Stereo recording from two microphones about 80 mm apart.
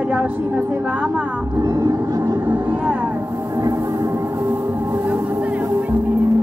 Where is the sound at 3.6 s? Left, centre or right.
Right.